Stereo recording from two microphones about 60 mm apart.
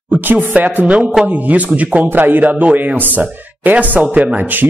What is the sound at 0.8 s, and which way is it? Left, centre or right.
A man's voice, right.